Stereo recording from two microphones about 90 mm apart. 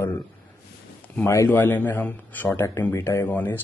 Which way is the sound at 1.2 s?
30° left (ahead or behind).